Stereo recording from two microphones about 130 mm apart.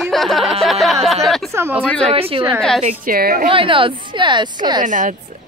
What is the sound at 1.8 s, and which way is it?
Speech, 5° left (ahead or behind).